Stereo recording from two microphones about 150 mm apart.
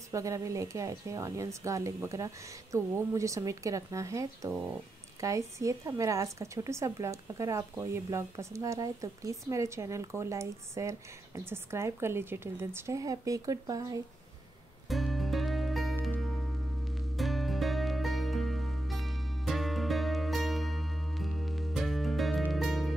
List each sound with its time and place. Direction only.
0.1 s speech: 20° right (ahead or behind)
14.9 s music: centre (ahead or behind)